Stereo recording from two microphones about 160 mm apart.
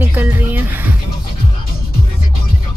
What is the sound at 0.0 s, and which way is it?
Music, 15° right (ahead or behind).